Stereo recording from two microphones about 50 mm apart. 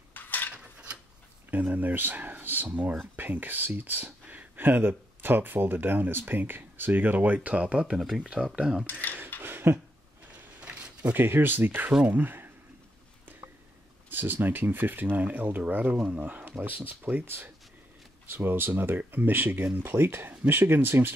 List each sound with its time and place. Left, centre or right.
0.1 s mechanisms: left
1.5 s speech: right
8.9 s mechanisms: left
9.4 s a sound: right
10.6 s a sound: right
11.1 s speech: right
14.0 s speech: right